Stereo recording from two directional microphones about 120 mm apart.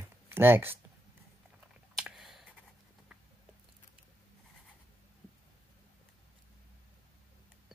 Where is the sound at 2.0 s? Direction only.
Centre (ahead or behind).